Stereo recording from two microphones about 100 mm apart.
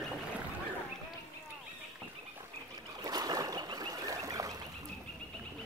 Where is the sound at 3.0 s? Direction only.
40° right (ahead or behind).